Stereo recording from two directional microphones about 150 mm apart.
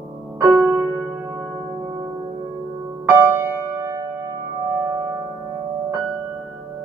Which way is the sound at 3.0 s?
15° right (ahead or behind).